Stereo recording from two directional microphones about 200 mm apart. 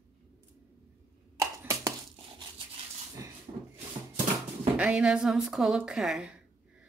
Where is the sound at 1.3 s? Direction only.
15° right (ahead or behind).